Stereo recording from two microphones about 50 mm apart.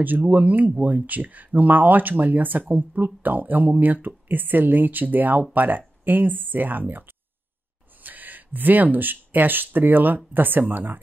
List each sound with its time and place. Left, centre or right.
0.0 s speech: right